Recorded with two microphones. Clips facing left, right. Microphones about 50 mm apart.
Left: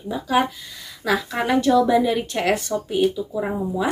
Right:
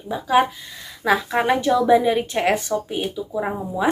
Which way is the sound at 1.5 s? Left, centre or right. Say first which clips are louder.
Left 2 dB; right.